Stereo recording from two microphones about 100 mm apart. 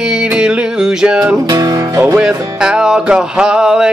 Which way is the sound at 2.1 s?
10° right (ahead or behind).